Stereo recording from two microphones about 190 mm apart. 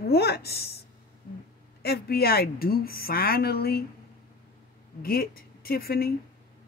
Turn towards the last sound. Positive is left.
turn(degrees=50)  # may be behind; listen again after turning